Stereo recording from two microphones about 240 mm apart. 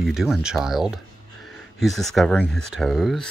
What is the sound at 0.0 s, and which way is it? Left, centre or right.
Speech, centre.